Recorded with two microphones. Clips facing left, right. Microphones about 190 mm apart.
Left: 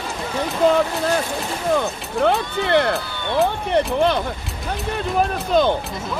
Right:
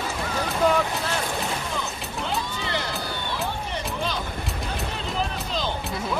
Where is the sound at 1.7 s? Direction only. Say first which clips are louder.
Left 10 dB; 60° left (ahead or behind).